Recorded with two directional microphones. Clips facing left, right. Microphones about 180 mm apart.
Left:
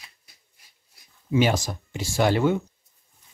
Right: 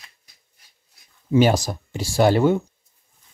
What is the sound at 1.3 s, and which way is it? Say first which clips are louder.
Speech: right 5 dB; 40° right (ahead or behind).